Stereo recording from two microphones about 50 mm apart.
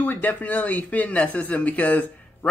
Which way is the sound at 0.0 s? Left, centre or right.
Left.